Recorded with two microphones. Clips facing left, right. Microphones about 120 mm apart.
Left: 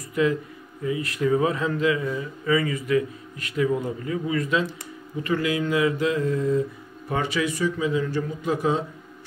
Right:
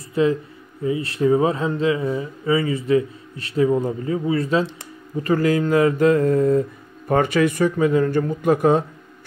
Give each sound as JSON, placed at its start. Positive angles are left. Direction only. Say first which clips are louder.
{"t": 0.1, "sound": "speech", "louder": "right 4 dB", "side_deg": -30}